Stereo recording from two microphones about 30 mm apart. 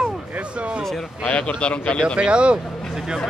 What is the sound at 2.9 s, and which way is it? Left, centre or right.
Speech, centre.